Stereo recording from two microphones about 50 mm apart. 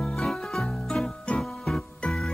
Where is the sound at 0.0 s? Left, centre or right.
Centre.